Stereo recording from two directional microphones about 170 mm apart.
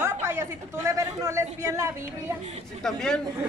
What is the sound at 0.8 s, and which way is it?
A man's voice, 15° right (ahead or behind).